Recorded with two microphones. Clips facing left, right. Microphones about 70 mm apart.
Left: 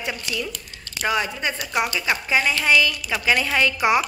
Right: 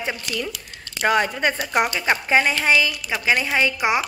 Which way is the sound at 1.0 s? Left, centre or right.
Right.